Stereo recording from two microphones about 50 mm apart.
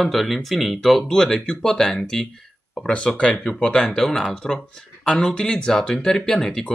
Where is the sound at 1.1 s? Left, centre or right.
Centre.